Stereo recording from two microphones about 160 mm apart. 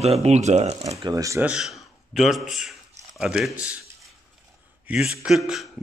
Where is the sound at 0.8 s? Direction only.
20° right (ahead or behind).